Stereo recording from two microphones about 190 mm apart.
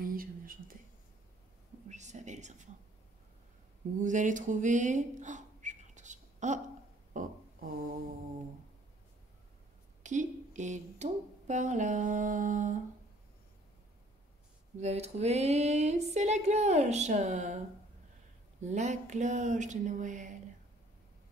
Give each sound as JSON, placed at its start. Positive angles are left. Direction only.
{"t": 0.0, "sound": "whispering", "side_deg": -50}
{"t": 1.9, "sound": "female singing", "side_deg": -40}
{"t": 4.0, "sound": "speech", "side_deg": -40}
{"t": 7.1, "sound": "burping", "side_deg": -40}
{"t": 10.0, "sound": "speech", "side_deg": -40}
{"t": 14.8, "sound": "female singing", "side_deg": -35}
{"t": 18.6, "sound": "female singing", "side_deg": -40}